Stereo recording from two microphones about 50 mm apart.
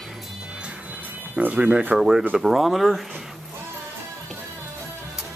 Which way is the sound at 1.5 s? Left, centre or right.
Right.